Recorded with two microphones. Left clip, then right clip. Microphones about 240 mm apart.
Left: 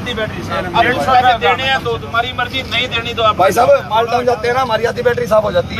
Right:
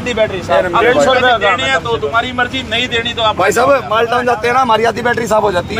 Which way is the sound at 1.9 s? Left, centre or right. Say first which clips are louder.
Right 3 dB; centre.